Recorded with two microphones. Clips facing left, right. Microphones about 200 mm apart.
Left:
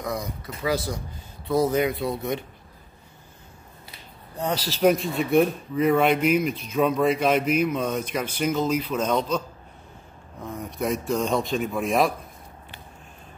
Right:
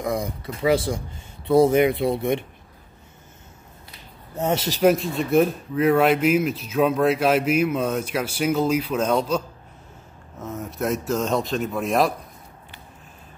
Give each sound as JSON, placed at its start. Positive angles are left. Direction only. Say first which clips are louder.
{"t": 0.0, "sound": "speech", "louder": "right 4 dB", "side_deg": -25}
{"t": 4.4, "sound": "speech", "louder": "right 4 dB", "side_deg": -25}
{"t": 4.8, "sound": "speech", "louder": "right 1 dB", "side_deg": 0}
{"t": 10.4, "sound": "speech", "louder": "right 2 dB", "side_deg": -5}